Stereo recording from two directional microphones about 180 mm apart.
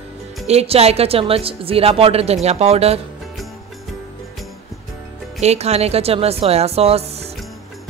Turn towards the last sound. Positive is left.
turn(degrees=-35)  # may be behind; listen again after turning